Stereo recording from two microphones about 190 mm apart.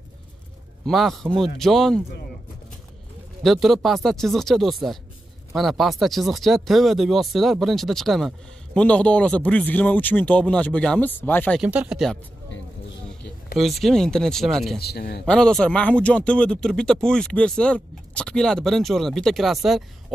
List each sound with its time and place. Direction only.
0.8 s speech: centre (ahead or behind)
3.4 s speech: centre (ahead or behind)
11.6 s speech: 5° right (ahead or behind)
13.6 s speech: centre (ahead or behind)
14.8 s speech: 55° left (ahead or behind)
15.2 s speech: 5° left (ahead or behind)